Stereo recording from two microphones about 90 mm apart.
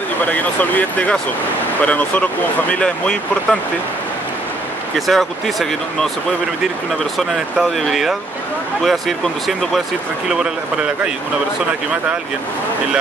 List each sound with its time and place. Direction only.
0.2 s speech: 20° left (ahead or behind)
4.9 s speech: centre (ahead or behind)
7.2 s speech: centre (ahead or behind)
10.3 s speech: 10° right (ahead or behind)